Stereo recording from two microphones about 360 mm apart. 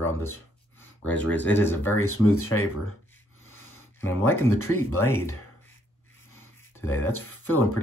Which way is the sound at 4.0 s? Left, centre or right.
Left.